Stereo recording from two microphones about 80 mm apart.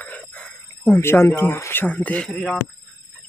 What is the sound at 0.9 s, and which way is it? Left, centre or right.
Speech, left.